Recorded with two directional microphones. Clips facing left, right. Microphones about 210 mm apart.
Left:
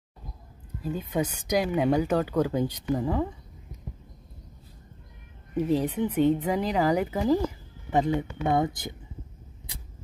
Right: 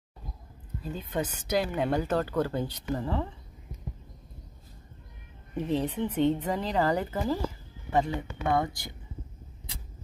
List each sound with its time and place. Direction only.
0.9 s speech: 10° left (ahead or behind)
5.6 s speech: 10° left (ahead or behind)